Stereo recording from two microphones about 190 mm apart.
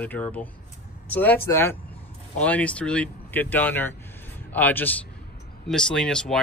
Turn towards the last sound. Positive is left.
turn(degrees=5)  # may be behind; listen again after turning